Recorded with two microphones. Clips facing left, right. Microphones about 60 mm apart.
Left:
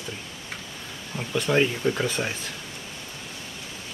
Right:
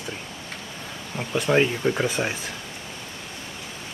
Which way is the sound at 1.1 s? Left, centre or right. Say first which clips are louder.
Right 2 dB; centre.